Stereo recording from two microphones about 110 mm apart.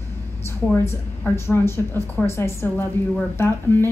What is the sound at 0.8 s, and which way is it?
A woman's voice, 20° left (ahead or behind).